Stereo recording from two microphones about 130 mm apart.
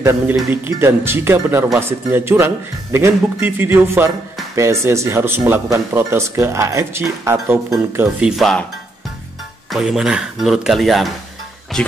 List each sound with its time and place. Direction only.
0.0 s speech: 20° right (ahead or behind)
8.3 s speech: centre (ahead or behind)
9.7 s speech: 5° right (ahead or behind)